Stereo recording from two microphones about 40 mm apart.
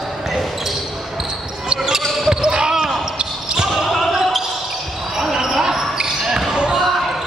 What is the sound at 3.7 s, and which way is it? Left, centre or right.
Basketball bounce, centre.